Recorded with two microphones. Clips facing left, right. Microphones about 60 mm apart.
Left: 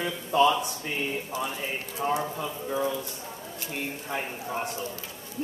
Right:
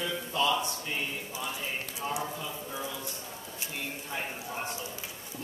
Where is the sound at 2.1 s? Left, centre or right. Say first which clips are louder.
Left 6 dB; left.